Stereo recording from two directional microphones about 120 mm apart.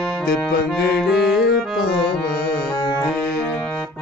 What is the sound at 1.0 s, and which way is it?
Music, centre (ahead or behind).